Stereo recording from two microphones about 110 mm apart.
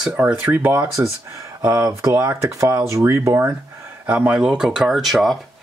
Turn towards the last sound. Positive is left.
turn(degrees=0)  # may be behind; listen again after turning